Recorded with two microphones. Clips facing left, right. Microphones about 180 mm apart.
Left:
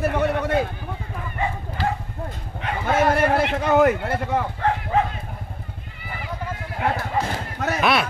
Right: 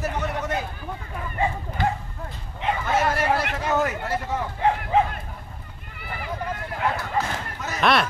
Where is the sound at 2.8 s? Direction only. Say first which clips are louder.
Left 5 dB; 55° left (ahead or behind).